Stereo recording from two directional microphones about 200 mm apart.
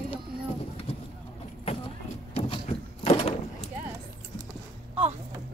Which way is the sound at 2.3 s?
30° left (ahead or behind).